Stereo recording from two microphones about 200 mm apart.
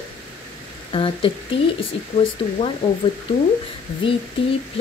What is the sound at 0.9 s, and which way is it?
Speech, 25° left (ahead or behind).